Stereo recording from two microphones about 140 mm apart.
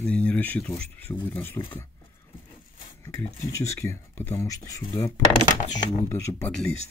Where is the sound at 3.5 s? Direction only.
20° left (ahead or behind).